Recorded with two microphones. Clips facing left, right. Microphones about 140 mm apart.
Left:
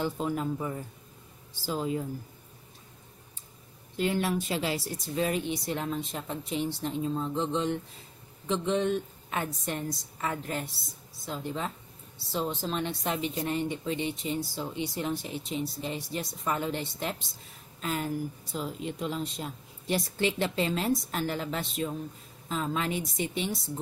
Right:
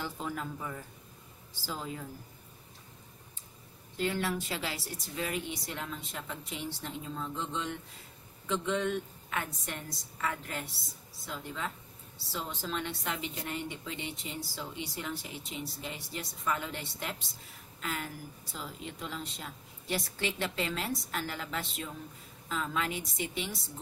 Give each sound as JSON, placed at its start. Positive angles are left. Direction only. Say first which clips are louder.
{"t": 0.0, "sound": "a woman's voice", "louder": "left 7 dB", "side_deg": 25}
{"t": 3.9, "sound": "a woman's voice", "louder": "left 4 dB", "side_deg": 20}